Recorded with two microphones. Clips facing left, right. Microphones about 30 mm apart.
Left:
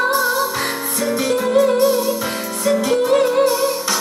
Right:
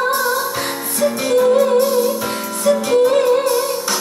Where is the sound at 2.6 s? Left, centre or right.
Left.